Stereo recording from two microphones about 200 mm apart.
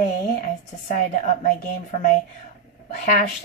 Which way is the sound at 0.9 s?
40° left (ahead or behind).